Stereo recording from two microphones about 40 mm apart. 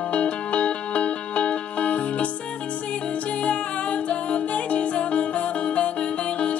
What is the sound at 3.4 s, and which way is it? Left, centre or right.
Music, left.